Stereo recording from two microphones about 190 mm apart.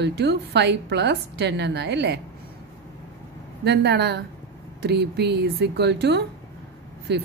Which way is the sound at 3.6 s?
60° right (ahead or behind).